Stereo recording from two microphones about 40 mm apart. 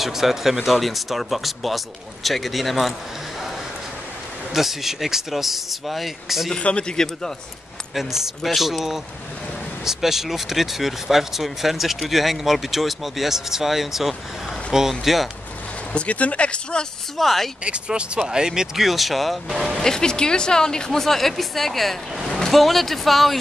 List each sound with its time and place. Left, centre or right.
0.0 s speech: centre
4.6 s speech: centre
6.5 s speech: left
7.9 s speech: centre
15.9 s speech: left
17.2 s speech: centre
17.6 s speech: right; by 19.8 s centre
19.8 s a woman's voice: centre